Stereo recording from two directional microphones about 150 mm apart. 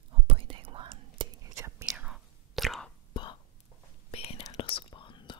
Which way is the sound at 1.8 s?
5° right (ahead or behind).